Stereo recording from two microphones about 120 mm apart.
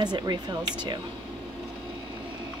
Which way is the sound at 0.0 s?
35° right (ahead or behind).